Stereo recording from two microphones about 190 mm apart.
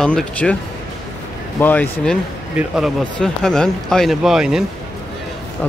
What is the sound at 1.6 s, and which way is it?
Speech, 10° left (ahead or behind).